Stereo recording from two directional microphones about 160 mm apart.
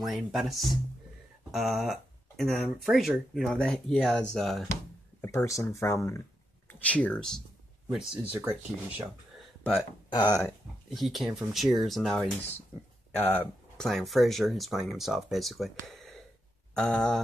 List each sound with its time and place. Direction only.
0.0 s speech: centre (ahead or behind)
5.2 s speech: 20° left (ahead or behind)
7.9 s speech: 10° right (ahead or behind)
10.1 s speech: 20° left (ahead or behind)
10.9 s speech: centre (ahead or behind)